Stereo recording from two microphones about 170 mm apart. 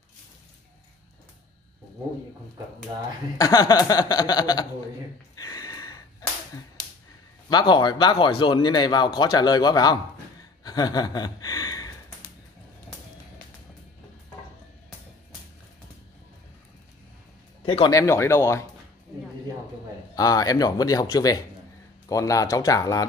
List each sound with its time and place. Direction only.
3.3 s speech: 20° left (ahead or behind)
5.3 s a sound: 20° left (ahead or behind)
7.4 s speech: 25° left (ahead or behind)
17.6 s speech: 30° left (ahead or behind)
17.9 s speech: 15° left (ahead or behind)
20.2 s speech: 20° left (ahead or behind)